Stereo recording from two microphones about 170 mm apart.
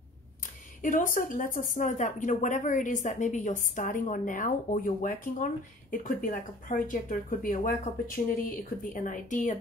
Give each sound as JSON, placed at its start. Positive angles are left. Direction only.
{"t": 0.8, "sound": "speech", "side_deg": 50}